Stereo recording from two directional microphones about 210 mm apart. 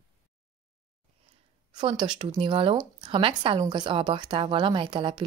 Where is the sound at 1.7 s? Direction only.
20° right (ahead or behind).